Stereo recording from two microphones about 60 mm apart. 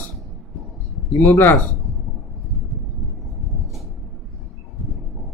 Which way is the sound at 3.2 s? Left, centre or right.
Centre.